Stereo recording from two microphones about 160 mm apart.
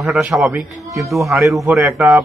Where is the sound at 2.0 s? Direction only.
20° right (ahead or behind).